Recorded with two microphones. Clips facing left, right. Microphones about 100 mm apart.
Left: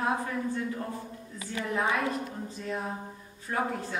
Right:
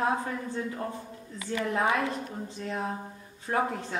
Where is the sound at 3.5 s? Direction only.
40° right (ahead or behind).